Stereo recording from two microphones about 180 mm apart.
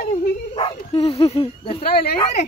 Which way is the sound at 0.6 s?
35° left (ahead or behind).